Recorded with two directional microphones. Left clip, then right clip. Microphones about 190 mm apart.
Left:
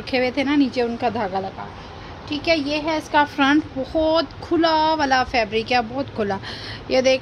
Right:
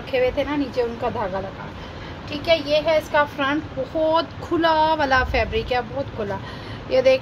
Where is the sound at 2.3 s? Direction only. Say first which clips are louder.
Right 1 dB; 45° left (ahead or behind).